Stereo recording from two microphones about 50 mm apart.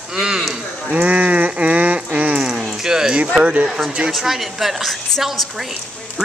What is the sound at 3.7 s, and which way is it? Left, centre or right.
A woman's voice, centre.